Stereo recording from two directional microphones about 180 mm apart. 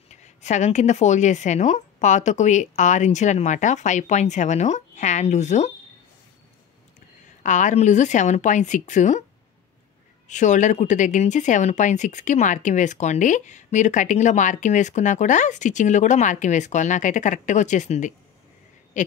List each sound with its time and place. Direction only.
0.1 s a woman's voice: 40° left (ahead or behind)
7.4 s a woman's voice: 40° left (ahead or behind)
10.2 s a woman's voice: 40° left (ahead or behind)
18.9 s owl: 40° left (ahead or behind)